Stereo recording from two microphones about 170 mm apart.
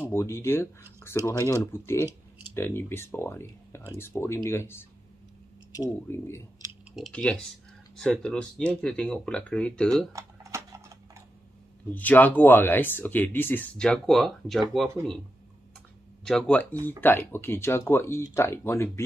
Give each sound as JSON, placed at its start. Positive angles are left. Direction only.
{"t": 0.1, "sound": "speech", "side_deg": 15}
{"t": 7.0, "sound": "speech", "side_deg": 5}
{"t": 10.1, "sound": "a sound", "side_deg": -20}
{"t": 11.9, "sound": "speech", "side_deg": 10}
{"t": 16.3, "sound": "speech", "side_deg": 5}